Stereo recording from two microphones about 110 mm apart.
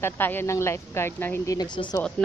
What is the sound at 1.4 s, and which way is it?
Speech, 40° left (ahead or behind).